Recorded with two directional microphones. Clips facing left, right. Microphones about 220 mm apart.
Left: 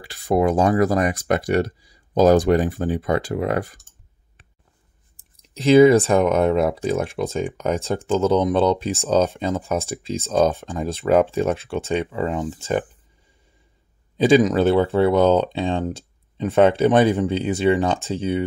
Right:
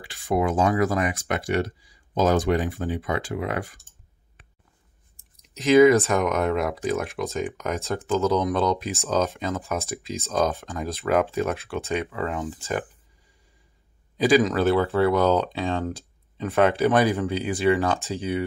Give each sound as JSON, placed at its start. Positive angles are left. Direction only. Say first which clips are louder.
{"t": 0.0, "sound": "speech", "louder": "left 5 dB", "side_deg": 40}
{"t": 5.5, "sound": "speech", "louder": "left 3 dB", "side_deg": 30}
{"t": 14.1, "sound": "speech", "louder": "left 4 dB", "side_deg": 25}